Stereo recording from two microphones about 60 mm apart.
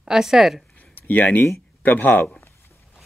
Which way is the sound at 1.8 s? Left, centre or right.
Left.